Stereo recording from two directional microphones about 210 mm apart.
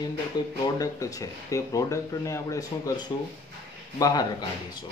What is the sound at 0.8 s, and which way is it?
Speech, 15° left (ahead or behind).